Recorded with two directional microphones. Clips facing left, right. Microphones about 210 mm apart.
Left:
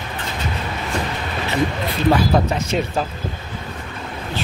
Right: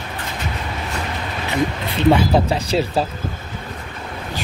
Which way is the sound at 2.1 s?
30° right (ahead or behind).